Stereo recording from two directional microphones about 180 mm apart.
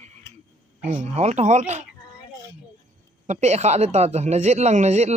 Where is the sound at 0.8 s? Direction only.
40° right (ahead or behind).